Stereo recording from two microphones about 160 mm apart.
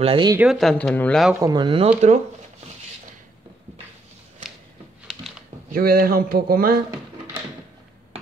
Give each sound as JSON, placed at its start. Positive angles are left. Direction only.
{"t": 0.0, "sound": "speech", "side_deg": -35}
{"t": 0.4, "sound": "speech", "side_deg": 0}
{"t": 1.3, "sound": "speech", "side_deg": -25}
{"t": 5.7, "sound": "speech", "side_deg": -65}